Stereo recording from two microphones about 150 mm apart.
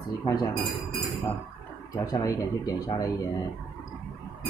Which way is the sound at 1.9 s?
25° left (ahead or behind).